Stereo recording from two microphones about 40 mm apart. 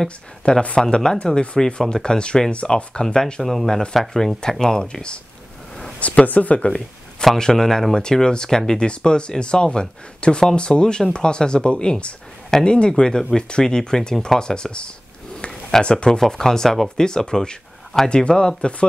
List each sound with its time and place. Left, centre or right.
0.6 s speech: left
3.4 s speech: centre
5.9 s speech: left
7.2 s a sound: left
7.5 s speech: centre
16.9 s speech: centre